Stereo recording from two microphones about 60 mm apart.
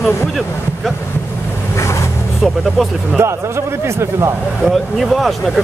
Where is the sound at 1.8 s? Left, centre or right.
Left.